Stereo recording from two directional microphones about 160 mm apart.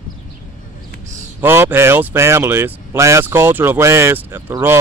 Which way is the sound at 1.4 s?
15° right (ahead or behind).